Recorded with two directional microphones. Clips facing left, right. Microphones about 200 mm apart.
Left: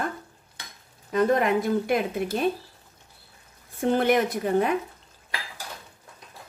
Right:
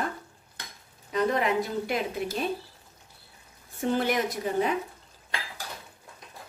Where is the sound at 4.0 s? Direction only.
55° left (ahead or behind).